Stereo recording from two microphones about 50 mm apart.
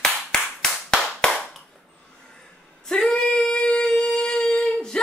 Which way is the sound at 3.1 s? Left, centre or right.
Centre.